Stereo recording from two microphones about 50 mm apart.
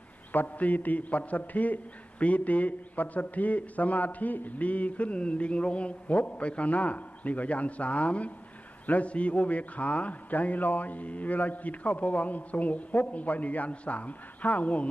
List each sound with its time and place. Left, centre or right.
0.3 s a man's voice: left